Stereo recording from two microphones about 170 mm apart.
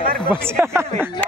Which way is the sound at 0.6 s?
15° right (ahead or behind).